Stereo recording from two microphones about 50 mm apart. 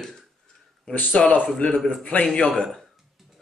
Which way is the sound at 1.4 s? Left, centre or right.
Left.